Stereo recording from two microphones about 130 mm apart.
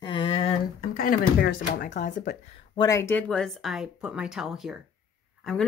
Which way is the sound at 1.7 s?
80° left.